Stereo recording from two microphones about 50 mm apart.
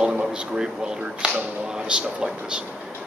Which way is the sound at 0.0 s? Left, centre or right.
Centre.